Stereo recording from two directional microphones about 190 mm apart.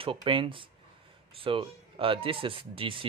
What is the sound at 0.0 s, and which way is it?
Speech, 25° right (ahead or behind).